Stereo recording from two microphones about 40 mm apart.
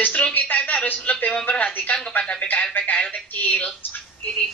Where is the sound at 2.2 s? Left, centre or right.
Left.